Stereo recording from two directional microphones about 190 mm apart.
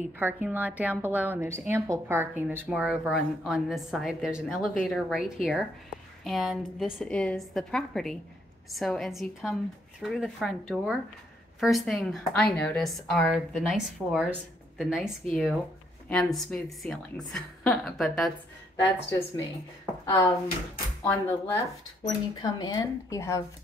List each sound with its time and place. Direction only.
0.2 s a woman's voice: 10° right (ahead or behind)
20.1 s speech: 25° left (ahead or behind)
21.0 s speech: 10° left (ahead or behind)